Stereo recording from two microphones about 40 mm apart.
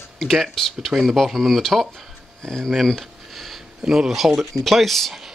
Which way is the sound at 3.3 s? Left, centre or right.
Centre.